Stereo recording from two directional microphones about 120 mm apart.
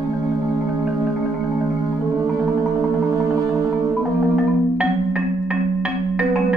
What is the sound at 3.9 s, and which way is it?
Marimba, centre (ahead or behind).